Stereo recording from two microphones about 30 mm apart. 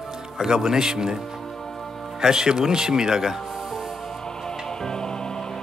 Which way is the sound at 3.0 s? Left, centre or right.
Centre.